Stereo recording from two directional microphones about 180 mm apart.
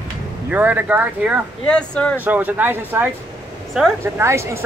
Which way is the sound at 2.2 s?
10° right (ahead or behind).